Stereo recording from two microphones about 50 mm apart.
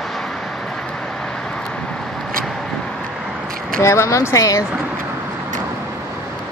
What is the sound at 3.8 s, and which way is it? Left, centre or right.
Speech, left.